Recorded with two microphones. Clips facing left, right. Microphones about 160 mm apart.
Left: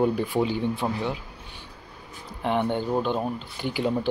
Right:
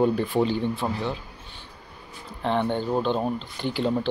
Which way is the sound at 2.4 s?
10° left (ahead or behind).